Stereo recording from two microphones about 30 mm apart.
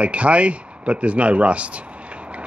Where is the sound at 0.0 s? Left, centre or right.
Right.